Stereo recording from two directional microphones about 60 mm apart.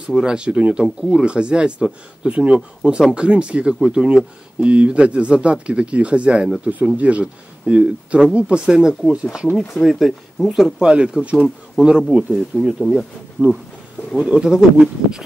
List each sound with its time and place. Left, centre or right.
0.0 s speech: centre
0.8 s speech: centre
9.5 s speech: centre
10.9 s speech: centre
12.0 s speech: centre
13.4 s speech: right